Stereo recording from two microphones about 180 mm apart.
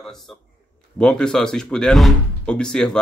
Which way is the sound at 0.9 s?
5° left (ahead or behind).